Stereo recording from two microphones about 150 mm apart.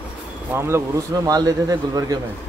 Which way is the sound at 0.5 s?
15° right (ahead or behind).